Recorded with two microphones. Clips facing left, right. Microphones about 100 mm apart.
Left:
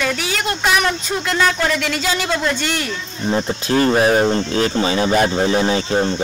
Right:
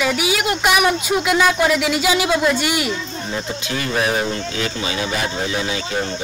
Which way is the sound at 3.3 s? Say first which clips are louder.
Left 9 dB; 40° left (ahead or behind).